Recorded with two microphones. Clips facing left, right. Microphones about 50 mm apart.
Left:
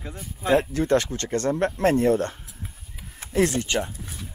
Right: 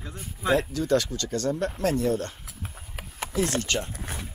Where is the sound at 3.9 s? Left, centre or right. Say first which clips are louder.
Right 4 dB; right.